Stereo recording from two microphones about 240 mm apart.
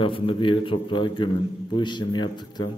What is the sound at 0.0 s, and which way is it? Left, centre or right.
A man's voice, left.